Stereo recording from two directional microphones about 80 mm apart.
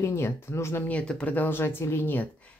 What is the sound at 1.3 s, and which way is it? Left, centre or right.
Speech, left.